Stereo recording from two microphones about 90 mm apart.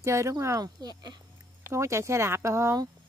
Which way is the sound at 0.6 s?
50° right (ahead or behind).